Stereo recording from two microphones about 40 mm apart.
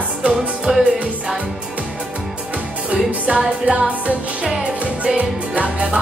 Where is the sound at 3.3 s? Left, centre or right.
Right.